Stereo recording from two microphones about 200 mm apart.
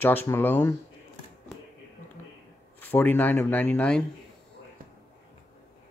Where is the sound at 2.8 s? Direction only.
10° left (ahead or behind).